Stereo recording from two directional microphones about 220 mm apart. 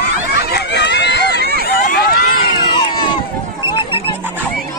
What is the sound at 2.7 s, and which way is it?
Crowd, 25° left (ahead or behind).